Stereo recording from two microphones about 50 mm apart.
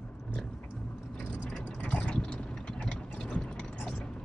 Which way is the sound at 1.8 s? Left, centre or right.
Left.